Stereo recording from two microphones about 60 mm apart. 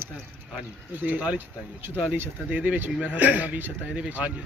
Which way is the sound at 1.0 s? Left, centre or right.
Right.